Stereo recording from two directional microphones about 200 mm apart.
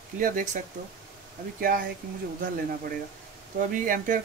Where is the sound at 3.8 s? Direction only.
45° right (ahead or behind).